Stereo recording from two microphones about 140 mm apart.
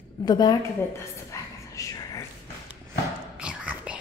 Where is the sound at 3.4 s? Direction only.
10° right (ahead or behind).